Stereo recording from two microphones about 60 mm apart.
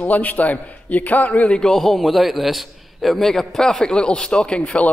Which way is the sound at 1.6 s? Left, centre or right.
Centre.